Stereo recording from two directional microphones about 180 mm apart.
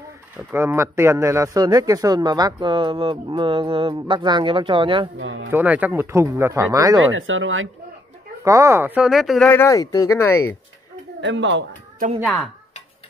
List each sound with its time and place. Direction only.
0.5 s a man's voice: 10° right (ahead or behind); by 5.1 s 30° right (ahead or behind)
5.2 s speech: 90° right
5.5 s speech: 10° right (ahead or behind)
7.0 s speech: 90° right
8.5 s speech: 15° right (ahead or behind); by 9.5 s centre (ahead or behind)
9.5 s speech: 15° left (ahead or behind)
11.1 s a man's voice: 90° right